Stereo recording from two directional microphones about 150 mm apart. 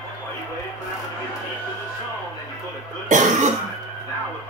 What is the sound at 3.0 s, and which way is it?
Speech, 55° right (ahead or behind).